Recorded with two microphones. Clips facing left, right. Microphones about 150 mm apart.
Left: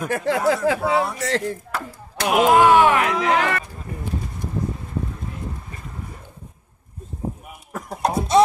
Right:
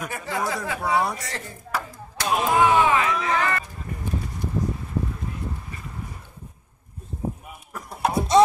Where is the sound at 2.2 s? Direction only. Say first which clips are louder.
Left 5 dB; 80° left.